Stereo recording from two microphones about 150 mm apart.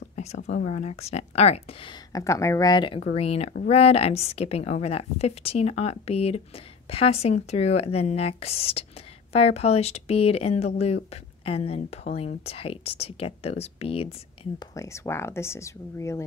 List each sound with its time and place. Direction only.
0.1 s a sound: 45° left (ahead or behind)
0.7 s a woman's voice: 45° left (ahead or behind)
2.1 s speech: 20° left (ahead or behind)
3.0 s a woman's voice: 45° left (ahead or behind)
14.8 s speech: 15° left (ahead or behind)